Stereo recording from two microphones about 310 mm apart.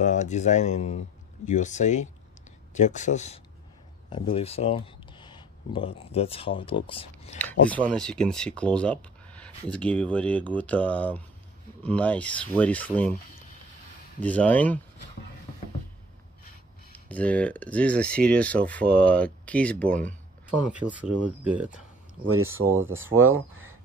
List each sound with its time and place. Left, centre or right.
0.0 s speech: left
7.7 s speech: centre
14.2 s speech: centre
17.1 s speech: centre
22.8 s speech: right